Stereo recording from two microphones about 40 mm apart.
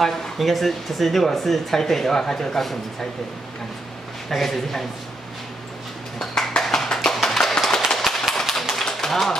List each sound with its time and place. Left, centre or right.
0.0 s speech: centre
4.3 s speech: centre
6.1 s a sound: centre
8.9 s typewriter: centre